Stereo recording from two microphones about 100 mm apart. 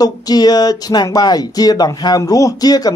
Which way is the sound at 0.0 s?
40° left (ahead or behind).